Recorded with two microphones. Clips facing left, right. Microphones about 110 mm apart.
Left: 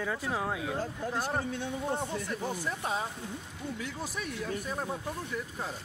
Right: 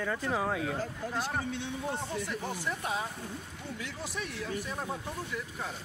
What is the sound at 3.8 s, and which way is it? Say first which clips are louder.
Speech: right 2 dB; 45° left (ahead or behind).